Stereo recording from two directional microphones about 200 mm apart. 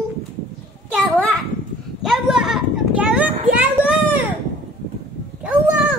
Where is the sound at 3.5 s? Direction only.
5° right (ahead or behind).